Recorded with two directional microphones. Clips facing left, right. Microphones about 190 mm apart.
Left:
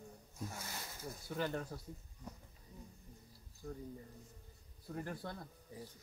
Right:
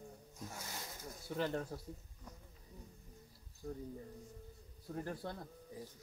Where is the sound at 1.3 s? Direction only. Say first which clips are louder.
Right 2 dB; 20° right (ahead or behind).